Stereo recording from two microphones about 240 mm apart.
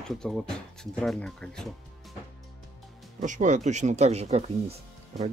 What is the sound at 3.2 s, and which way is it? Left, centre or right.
Speech, right.